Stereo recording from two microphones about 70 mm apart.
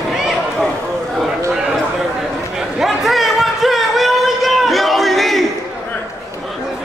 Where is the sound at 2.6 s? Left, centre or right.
Centre.